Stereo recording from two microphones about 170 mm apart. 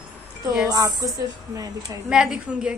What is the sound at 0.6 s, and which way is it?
Speech, 20° right (ahead or behind).